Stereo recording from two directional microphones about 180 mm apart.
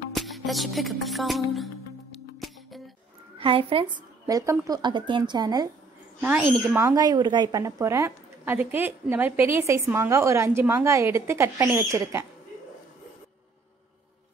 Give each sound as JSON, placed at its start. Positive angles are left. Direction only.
{"t": 0.1, "sound": "music", "side_deg": 0}
{"t": 3.3, "sound": "a woman's voice", "side_deg": -30}
{"t": 6.2, "sound": "a woman's voice", "side_deg": -10}